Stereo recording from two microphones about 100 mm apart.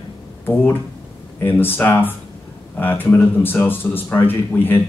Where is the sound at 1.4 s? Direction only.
20° left (ahead or behind).